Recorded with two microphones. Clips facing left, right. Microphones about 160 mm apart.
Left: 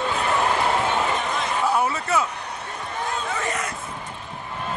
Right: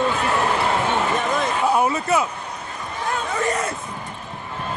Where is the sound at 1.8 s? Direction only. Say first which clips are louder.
Right 3 dB; 15° right (ahead or behind).